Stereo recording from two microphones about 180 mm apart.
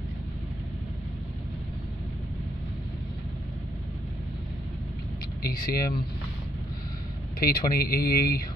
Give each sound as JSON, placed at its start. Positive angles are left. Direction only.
{"t": 5.4, "sound": "speech", "side_deg": 55}
{"t": 7.3, "sound": "speech", "side_deg": 55}